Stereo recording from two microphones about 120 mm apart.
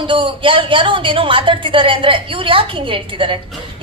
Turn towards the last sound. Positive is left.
turn(degrees=-45)  # may be behind; listen again after turning